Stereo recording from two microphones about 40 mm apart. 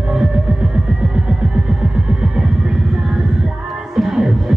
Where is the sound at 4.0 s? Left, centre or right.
Centre.